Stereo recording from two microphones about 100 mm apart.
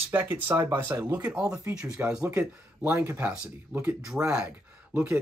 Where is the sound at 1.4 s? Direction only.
35° right (ahead or behind).